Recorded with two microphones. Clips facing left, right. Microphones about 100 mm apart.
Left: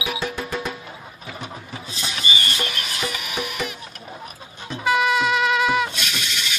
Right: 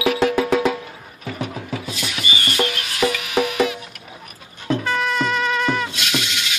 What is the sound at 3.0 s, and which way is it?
Music, 90° right.